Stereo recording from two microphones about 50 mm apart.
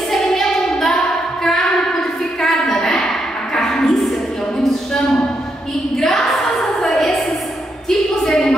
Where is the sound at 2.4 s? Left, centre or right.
Centre.